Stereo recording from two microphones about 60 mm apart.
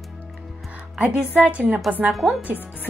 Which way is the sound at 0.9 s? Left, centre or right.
Right.